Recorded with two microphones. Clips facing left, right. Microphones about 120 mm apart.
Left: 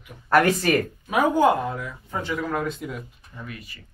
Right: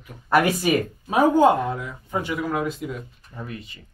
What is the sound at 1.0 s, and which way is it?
Speech, 30° right (ahead or behind).